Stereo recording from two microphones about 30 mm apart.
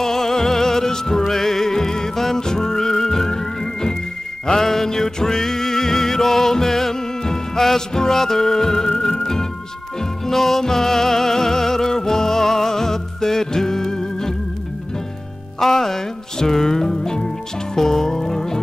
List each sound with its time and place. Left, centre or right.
0.0 s music: centre
15.6 s music: centre